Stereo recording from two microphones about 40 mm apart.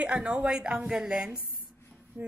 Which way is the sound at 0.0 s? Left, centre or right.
Right.